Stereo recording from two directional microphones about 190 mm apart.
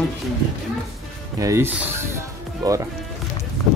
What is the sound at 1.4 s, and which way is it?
Speech, 15° right (ahead or behind).